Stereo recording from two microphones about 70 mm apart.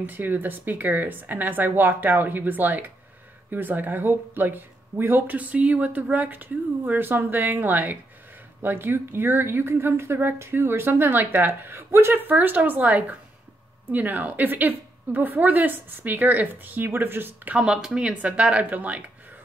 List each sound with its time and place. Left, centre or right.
0.0 s a woman's voice: right
17.6 s speech: centre